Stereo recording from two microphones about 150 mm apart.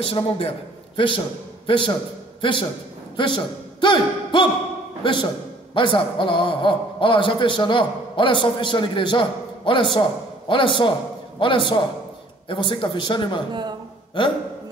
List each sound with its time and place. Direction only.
0.0 s a man's voice: 40° left (ahead or behind)
3.2 s a man's voice: 35° left (ahead or behind)
13.5 s a man's voice: 30° right (ahead or behind)
14.2 s a man's voice: 35° left (ahead or behind)